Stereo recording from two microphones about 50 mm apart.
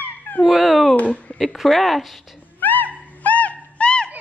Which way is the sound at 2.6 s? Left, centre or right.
Left.